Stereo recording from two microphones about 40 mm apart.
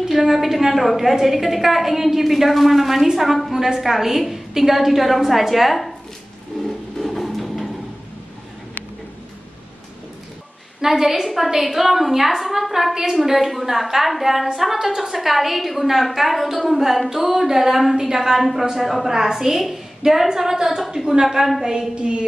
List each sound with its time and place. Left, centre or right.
0.1 s a woman's voice: centre
7.0 s music: centre
10.8 s a woman's voice: centre
21.9 s a sound: right